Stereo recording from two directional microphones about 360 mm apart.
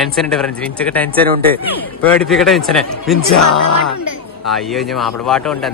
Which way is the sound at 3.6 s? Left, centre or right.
Left.